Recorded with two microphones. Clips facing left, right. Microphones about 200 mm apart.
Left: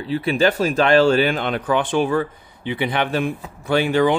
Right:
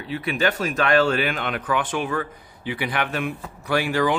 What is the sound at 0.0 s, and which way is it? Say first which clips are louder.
A man's voice: left 5 dB; 30° left (ahead or behind).